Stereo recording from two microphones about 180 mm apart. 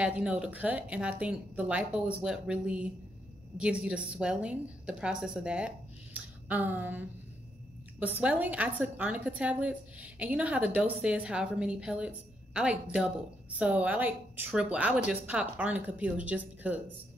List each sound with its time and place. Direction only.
0.0 s a woman's voice: 5° right (ahead or behind)
6.1 s a sound: 10° right (ahead or behind)
8.0 s a woman's voice: 10° right (ahead or behind)